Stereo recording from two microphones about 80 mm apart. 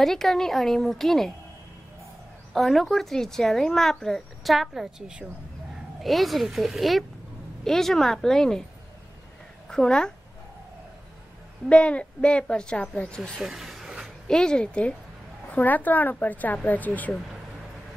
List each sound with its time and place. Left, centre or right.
0.0 s speech: centre
2.5 s speech: centre
9.7 s a woman's voice: centre
11.7 s a woman's voice: centre
13.4 s a sound: centre
14.2 s a woman's voice: centre